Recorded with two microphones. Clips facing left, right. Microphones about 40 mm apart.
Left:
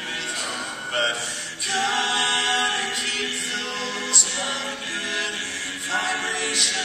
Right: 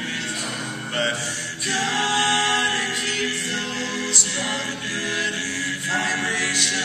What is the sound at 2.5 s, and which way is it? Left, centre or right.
Mantra, right.